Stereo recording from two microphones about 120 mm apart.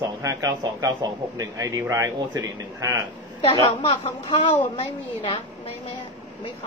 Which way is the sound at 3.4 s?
55° left (ahead or behind).